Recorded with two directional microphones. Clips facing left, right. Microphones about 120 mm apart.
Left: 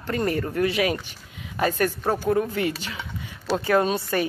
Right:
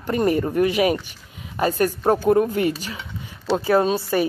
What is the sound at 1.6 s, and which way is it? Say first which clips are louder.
Speech: right 4 dB; 40° right (ahead or behind).